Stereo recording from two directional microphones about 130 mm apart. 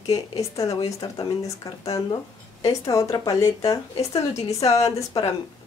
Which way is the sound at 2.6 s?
25° left (ahead or behind).